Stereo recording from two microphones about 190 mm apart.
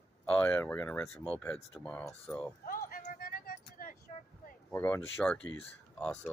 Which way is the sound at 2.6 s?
50° left (ahead or behind).